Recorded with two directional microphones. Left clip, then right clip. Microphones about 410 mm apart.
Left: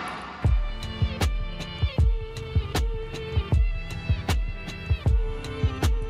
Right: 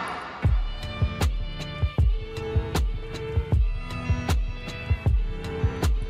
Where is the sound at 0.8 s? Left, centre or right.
Centre.